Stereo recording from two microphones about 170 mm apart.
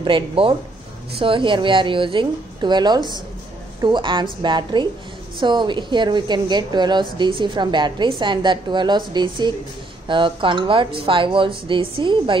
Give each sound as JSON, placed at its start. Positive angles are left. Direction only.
{"t": 0.0, "sound": "speech", "side_deg": -30}